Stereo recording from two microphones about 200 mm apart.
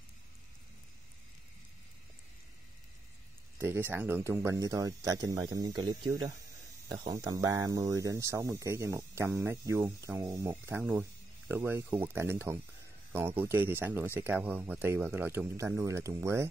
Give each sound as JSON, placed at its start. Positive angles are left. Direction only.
{"t": 3.5, "sound": "speech", "side_deg": -10}